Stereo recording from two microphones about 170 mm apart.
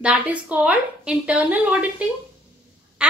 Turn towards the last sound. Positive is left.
turn(degrees=-5)  # may be behind; listen again after turning